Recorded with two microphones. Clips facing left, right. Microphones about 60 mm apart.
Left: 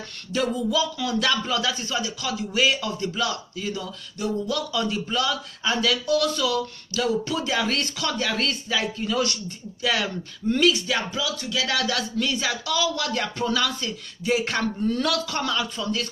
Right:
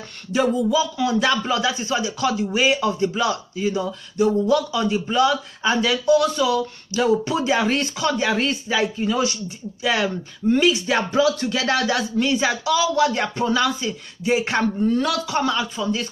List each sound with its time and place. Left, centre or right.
0.3 s speech: centre
2.5 s speech: centre
2.9 s speech: right
4.6 s a man's voice: centre
4.9 s speech: centre
10.9 s music: right
11.8 s speech: centre